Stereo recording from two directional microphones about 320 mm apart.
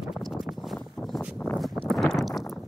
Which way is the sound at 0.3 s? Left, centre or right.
Centre.